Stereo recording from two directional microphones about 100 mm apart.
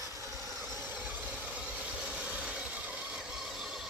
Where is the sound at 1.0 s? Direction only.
15° right (ahead or behind).